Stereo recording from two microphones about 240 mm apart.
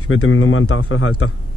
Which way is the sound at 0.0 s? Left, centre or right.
Left.